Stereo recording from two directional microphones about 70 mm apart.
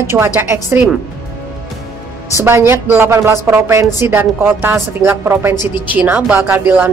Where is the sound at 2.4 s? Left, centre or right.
Right.